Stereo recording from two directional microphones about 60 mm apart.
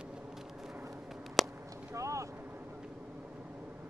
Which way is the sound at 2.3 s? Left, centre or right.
Right.